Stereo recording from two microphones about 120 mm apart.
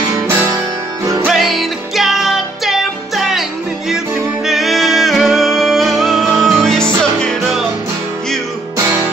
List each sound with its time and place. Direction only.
1.2 s music: centre (ahead or behind)
4.5 s music: centre (ahead or behind)
8.7 s music: 25° right (ahead or behind)